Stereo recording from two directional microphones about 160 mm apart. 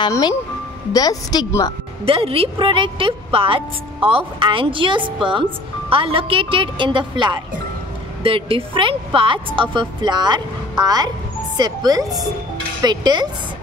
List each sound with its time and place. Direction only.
0.0 s a woman's voice: 25° left (ahead or behind)
2.0 s a woman's voice: 35° right (ahead or behind)